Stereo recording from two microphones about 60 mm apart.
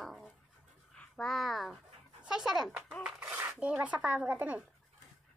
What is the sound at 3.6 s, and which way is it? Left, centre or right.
Speech, centre.